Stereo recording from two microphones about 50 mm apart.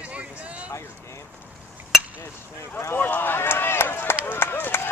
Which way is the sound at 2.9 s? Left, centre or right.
Left.